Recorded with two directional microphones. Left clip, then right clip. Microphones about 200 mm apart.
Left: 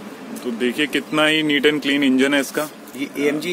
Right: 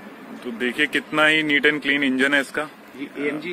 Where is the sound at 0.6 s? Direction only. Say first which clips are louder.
Even; 5° left (ahead or behind).